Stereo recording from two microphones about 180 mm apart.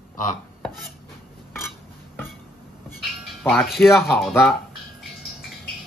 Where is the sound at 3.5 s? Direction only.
Centre (ahead or behind).